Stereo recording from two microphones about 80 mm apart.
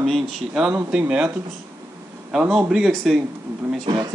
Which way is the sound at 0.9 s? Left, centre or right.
Centre.